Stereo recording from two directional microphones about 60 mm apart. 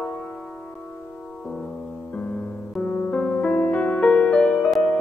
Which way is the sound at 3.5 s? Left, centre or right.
Left.